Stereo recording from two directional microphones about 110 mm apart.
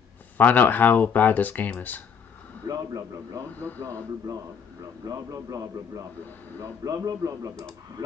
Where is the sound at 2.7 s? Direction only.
30° right (ahead or behind).